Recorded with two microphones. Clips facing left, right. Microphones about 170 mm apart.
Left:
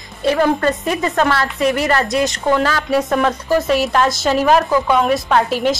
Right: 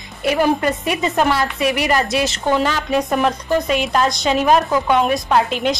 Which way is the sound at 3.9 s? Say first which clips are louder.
Left 1 dB; centre (ahead or behind).